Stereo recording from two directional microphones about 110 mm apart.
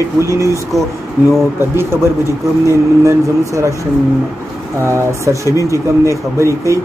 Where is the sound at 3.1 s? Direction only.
25° right (ahead or behind).